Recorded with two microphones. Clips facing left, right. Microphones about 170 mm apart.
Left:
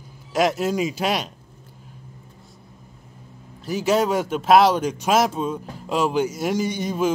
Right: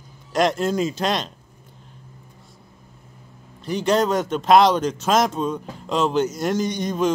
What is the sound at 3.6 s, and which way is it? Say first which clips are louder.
Speech: even; 5° left (ahead or behind).